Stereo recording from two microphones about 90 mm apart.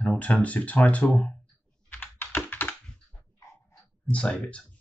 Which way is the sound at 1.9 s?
20° left (ahead or behind).